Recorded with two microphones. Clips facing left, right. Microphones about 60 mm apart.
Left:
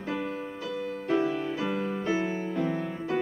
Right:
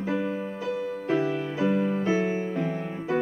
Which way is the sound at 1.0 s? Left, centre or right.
Centre.